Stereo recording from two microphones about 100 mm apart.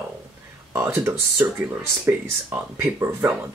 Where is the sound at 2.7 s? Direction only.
25° right (ahead or behind).